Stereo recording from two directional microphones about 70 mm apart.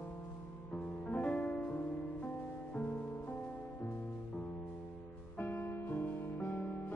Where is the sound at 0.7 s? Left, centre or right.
Centre.